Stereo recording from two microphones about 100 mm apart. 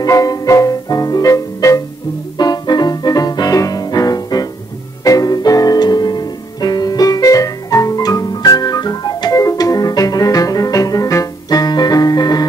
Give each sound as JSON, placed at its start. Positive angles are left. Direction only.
{"t": 0.0, "sound": "music", "side_deg": 35}
{"t": 2.3, "sound": "music", "side_deg": 45}
{"t": 9.4, "sound": "organ", "side_deg": 35}